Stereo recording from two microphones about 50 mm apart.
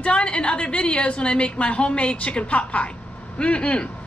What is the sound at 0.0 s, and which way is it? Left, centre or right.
A woman's voice, left.